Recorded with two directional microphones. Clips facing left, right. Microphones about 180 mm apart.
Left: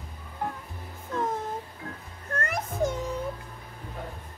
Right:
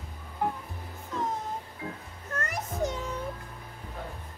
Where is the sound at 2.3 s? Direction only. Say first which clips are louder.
Left 3 dB; 55° left (ahead or behind).